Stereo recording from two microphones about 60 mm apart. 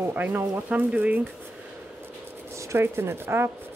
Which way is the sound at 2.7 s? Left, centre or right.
Right.